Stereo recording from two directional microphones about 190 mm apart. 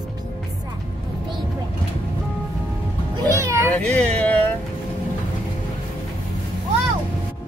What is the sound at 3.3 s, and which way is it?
Meow, 15° right (ahead or behind).